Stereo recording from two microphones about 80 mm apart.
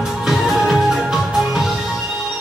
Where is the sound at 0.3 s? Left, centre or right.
Centre.